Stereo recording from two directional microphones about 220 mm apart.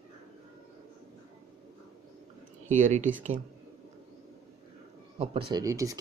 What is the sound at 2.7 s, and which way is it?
Speech, 35° right (ahead or behind).